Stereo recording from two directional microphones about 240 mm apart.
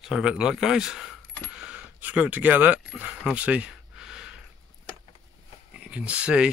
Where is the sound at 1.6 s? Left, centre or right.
Centre.